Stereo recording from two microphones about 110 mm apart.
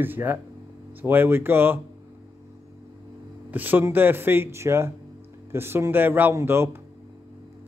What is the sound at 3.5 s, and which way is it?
Speech, 15° right (ahead or behind).